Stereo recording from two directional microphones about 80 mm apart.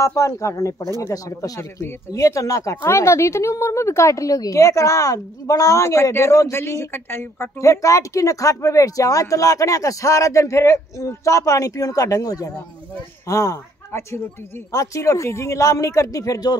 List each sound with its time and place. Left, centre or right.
0.0 s a woman's voice: left
1.6 s speech: left
2.1 s a woman's voice: left